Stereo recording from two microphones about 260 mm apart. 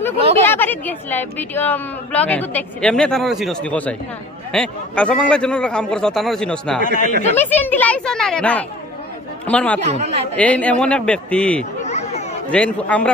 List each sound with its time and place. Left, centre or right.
0.5 s a woman's voice: centre
6.8 s speech: left
7.3 s a woman's voice: centre
9.9 s a woman's voice: right
10.3 s a woman's voice: centre
11.8 s chatter: left
12.4 s a woman's voice: centre